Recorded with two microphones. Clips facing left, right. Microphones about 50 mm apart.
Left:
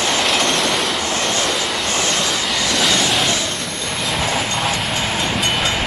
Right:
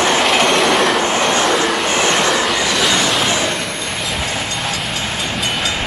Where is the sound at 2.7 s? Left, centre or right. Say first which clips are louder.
Right 2 dB; centre.